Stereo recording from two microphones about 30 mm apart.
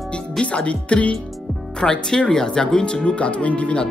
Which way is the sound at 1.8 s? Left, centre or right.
Left.